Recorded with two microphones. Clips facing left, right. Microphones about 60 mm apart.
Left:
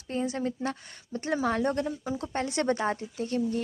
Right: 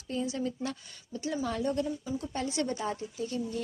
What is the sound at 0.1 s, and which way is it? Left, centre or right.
Speech, left.